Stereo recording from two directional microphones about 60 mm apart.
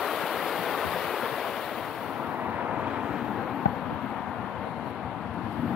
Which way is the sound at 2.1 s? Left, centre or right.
Centre.